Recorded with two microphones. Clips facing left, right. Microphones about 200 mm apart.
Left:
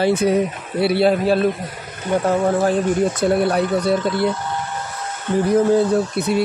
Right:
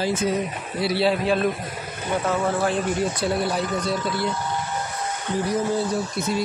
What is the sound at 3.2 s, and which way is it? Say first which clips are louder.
Speech: left 7 dB; 60° left (ahead or behind).